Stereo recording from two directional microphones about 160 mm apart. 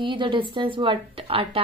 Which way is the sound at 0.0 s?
30° right (ahead or behind).